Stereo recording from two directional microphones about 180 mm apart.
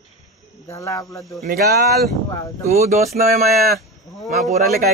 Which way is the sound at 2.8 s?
40° right (ahead or behind).